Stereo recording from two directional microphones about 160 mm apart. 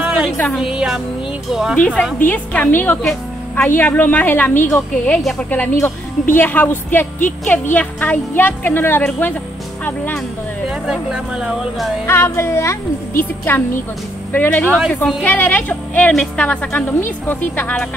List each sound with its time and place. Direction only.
0.0 s music: 10° right (ahead or behind)
0.6 s speech: 5° right (ahead or behind)
2.1 s a woman's voice: 10° left (ahead or behind)
3.0 s a woman's voice: centre (ahead or behind)
10.7 s speech: 5° right (ahead or behind)
12.1 s a woman's voice: 15° left (ahead or behind)
14.3 s a woman's voice: 10° left (ahead or behind)